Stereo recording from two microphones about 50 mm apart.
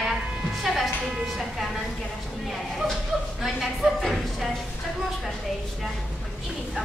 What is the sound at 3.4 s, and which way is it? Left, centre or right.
A woman's voice, centre.